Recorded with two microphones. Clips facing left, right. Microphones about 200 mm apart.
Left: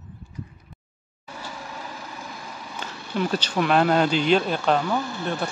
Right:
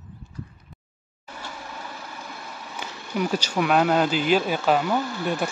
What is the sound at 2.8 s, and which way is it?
Speech, 10° right (ahead or behind).